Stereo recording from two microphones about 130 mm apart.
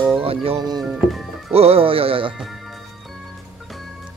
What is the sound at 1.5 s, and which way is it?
Speech, 50° right (ahead or behind).